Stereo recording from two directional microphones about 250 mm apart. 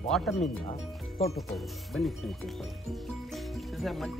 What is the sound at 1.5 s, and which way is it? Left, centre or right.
Speech, centre.